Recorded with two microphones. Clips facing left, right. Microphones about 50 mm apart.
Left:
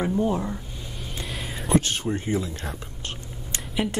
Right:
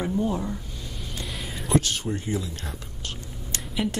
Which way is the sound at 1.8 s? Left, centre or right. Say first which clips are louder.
Right 1 dB; left.